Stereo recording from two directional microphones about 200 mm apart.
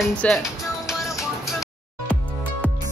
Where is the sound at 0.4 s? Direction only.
15° left (ahead or behind).